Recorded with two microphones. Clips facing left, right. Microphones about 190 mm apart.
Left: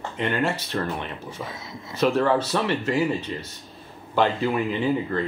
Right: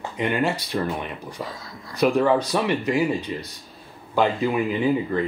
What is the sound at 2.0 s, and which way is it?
Speech, 15° right (ahead or behind).